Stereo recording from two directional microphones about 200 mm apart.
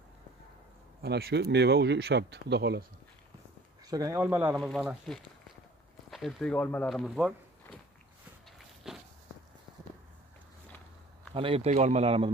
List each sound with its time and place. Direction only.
1.0 s speech: 55° right (ahead or behind)
3.8 s speech: 20° right (ahead or behind)
4.6 s speech: 5° left (ahead or behind)
8.8 s walk: centre (ahead or behind)
11.3 s speech: 30° right (ahead or behind)